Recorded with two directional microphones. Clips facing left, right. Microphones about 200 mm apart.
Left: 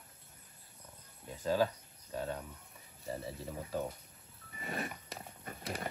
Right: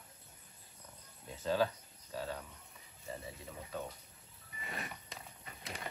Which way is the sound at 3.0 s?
35° left (ahead or behind).